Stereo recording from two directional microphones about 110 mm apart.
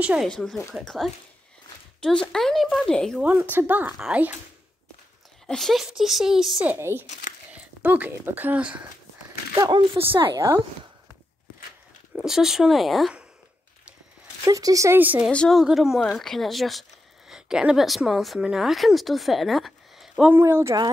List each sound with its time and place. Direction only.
0.0 s speech: 10° right (ahead or behind)
0.3 s speech: 5° left (ahead or behind)
3.2 s speech: 15° right (ahead or behind)
3.9 s speech: 5° right (ahead or behind)
5.5 s speech: centre (ahead or behind)
6.6 s speech: 20° right (ahead or behind)
9.6 s speech: 40° right (ahead or behind)
10.3 s speech: 30° right (ahead or behind)
12.2 s speech: 5° right (ahead or behind)
14.4 s speech: 30° right (ahead or behind)
15.0 s speech: 15° right (ahead or behind)
15.3 s a woman's voice: 5° left (ahead or behind)
15.6 s a woman's voice: 5° right (ahead or behind)
20.2 s speech: 20° right (ahead or behind)